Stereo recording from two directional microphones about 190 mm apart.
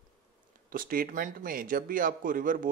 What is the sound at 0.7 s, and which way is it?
A man's voice, 50° right (ahead or behind).